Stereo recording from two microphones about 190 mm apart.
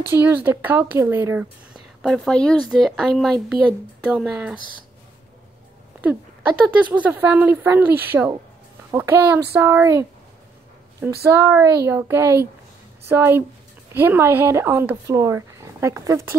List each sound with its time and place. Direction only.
0.1 s speech: 10° right (ahead or behind)
2.0 s speech: centre (ahead or behind)
5.9 s speech: 5° right (ahead or behind)
11.2 s speech: 15° right (ahead or behind)